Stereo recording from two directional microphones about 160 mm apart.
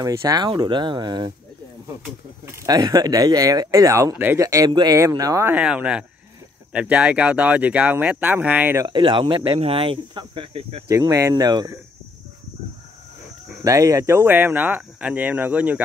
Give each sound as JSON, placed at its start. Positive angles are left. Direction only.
{"t": 0.0, "sound": "speech", "side_deg": -20}
{"t": 2.4, "sound": "speech", "side_deg": -20}
{"t": 8.8, "sound": "speech", "side_deg": -30}
{"t": 10.9, "sound": "speech", "side_deg": -20}
{"t": 13.7, "sound": "speech", "side_deg": -20}